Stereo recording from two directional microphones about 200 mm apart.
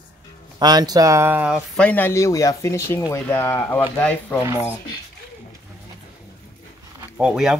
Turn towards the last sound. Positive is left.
turn(degrees=-5)  # may be behind; listen again after turning